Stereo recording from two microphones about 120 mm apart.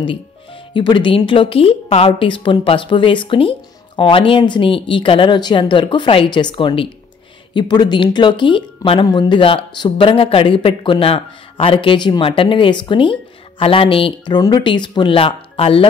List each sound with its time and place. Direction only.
0.7 s speech: 40° left (ahead or behind)
9.4 s speech: 45° left (ahead or behind)